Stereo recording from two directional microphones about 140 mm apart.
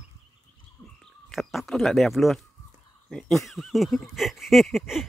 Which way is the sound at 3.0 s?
5° left (ahead or behind).